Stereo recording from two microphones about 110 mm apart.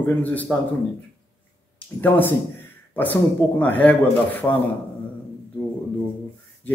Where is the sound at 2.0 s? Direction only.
15° left (ahead or behind).